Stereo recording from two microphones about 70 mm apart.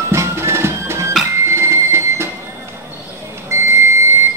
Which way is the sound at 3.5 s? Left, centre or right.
Right.